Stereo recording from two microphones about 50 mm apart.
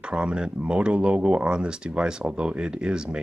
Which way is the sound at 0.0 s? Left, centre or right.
Right.